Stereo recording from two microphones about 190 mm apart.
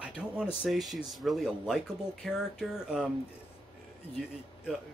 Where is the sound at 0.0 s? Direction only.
5° right (ahead or behind).